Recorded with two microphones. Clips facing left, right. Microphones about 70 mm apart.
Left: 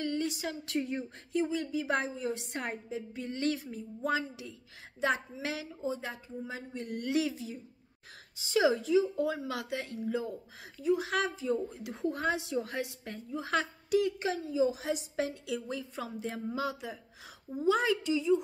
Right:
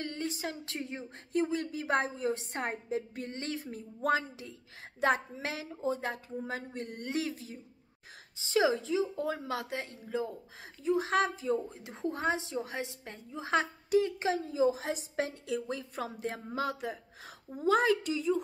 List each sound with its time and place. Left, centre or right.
0.0 s a sound: right
1.3 s a woman's voice: right
3.4 s a woman's voice: right
3.7 s a woman's voice: right
5.8 s a woman's voice: right
14.4 s a woman's voice: right